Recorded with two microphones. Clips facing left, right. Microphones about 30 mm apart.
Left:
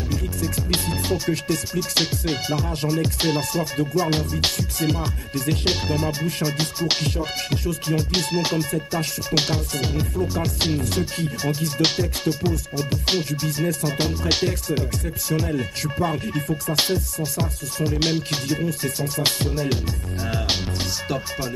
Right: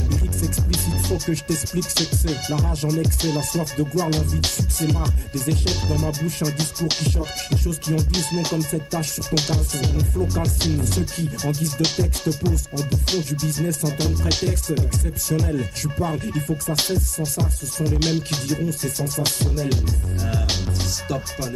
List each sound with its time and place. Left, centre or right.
0.6 s music: left
1.1 s music: left
3.8 s music: left
18.6 s music: left